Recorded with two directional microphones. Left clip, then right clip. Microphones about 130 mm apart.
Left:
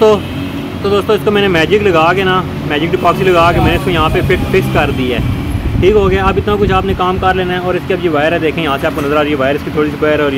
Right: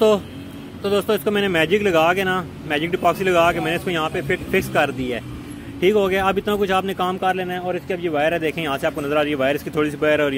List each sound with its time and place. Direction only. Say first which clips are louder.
0.8 s speech: left 8 dB; 50° right (ahead or behind)
4.5 s speech: left 7 dB; 60° right (ahead or behind); by 10.3 s 85° right